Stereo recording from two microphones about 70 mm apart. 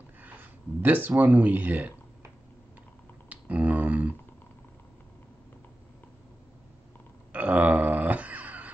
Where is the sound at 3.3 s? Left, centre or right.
Right.